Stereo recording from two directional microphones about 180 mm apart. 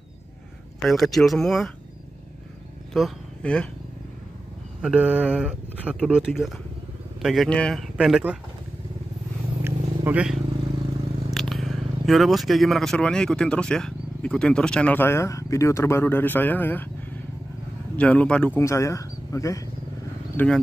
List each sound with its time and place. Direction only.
0.8 s speech: centre (ahead or behind)
2.9 s a sound: 5° left (ahead or behind)
4.8 s speech: 10° right (ahead or behind)
9.7 s a sound: 10° right (ahead or behind)
11.3 s speech: centre (ahead or behind)
17.9 s speech: 5° left (ahead or behind)
18.6 s speech: 15° left (ahead or behind)
20.3 s speech: 5° left (ahead or behind)